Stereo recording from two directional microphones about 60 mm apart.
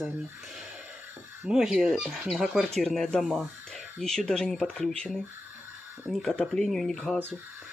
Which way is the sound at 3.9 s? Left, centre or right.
Centre.